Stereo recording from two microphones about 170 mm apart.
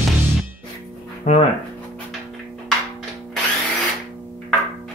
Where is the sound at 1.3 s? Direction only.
40° left (ahead or behind).